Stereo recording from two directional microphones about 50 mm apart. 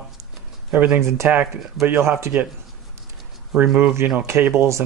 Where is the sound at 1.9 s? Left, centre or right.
Right.